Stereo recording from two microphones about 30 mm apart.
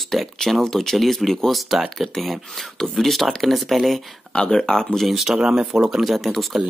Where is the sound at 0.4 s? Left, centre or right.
Centre.